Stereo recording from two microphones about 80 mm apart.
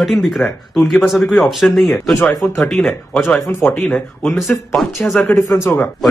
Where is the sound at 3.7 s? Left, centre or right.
Centre.